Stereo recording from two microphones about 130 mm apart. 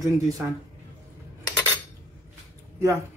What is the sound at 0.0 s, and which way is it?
Speech, 25° right (ahead or behind).